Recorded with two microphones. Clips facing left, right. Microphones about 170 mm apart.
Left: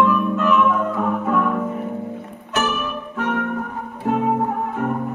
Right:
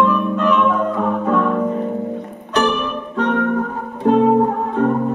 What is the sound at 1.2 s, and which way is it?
Music, 30° right (ahead or behind).